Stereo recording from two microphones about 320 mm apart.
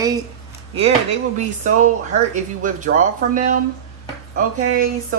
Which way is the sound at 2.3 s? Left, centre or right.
Right.